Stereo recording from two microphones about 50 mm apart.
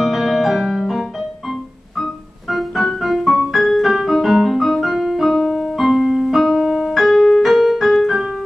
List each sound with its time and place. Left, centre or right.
0.0 s music: centre
2.5 s music: centre
3.5 s piano: centre
5.9 s piano: centre